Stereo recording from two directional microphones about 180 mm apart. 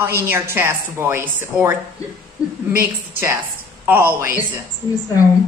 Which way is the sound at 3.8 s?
10° right (ahead or behind).